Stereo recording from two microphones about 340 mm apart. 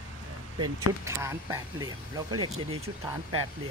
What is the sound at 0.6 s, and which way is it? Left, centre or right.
Speech, centre.